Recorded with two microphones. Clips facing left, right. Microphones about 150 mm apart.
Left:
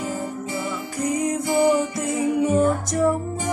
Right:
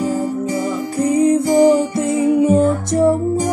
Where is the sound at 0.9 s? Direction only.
30° right (ahead or behind).